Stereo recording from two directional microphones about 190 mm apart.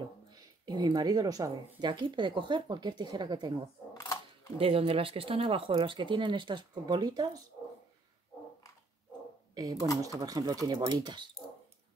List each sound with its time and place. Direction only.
0.7 s speech: 20° right (ahead or behind)
3.9 s speech: 20° left (ahead or behind)
4.6 s speech: 30° right (ahead or behind)
10.1 s speech: 15° right (ahead or behind)